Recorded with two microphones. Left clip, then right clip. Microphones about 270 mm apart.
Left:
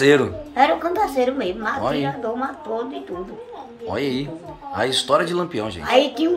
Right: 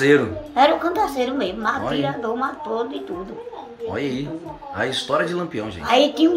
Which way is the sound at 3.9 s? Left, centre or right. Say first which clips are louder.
Left 3 dB; centre.